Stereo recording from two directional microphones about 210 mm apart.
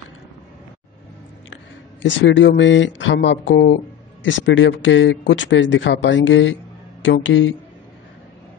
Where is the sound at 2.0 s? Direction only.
60° left (ahead or behind).